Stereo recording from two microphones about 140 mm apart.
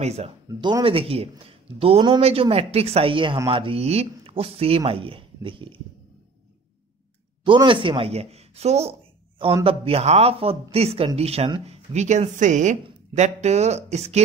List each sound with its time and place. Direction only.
0.0 s speech: 50° right (ahead or behind)
0.5 s speech: 30° right (ahead or behind)
7.4 s speech: 35° right (ahead or behind)